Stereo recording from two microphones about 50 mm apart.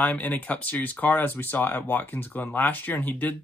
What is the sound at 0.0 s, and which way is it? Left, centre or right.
Speech, left.